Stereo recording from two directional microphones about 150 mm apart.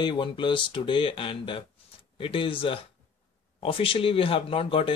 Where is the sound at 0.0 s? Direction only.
30° left (ahead or behind).